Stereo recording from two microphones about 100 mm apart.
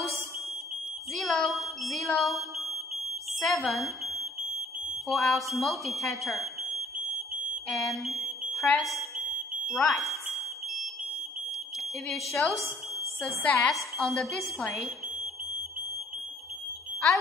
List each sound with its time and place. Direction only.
1.1 s a sound: centre (ahead or behind)
3.3 s speech: centre (ahead or behind)
8.2 s smoke detector: centre (ahead or behind)
12.1 s speech: centre (ahead or behind)
13.4 s a woman's voice: 15° left (ahead or behind)
13.9 s speech: centre (ahead or behind)